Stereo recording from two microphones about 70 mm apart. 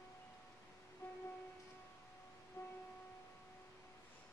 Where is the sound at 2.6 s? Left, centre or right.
Left.